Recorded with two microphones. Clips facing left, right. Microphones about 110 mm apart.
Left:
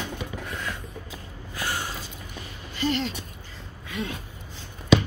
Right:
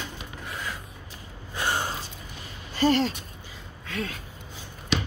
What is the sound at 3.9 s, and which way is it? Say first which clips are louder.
Speech: left 1 dB; 15° left (ahead or behind).